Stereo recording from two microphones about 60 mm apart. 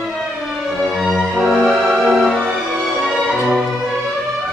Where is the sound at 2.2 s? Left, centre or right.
Centre.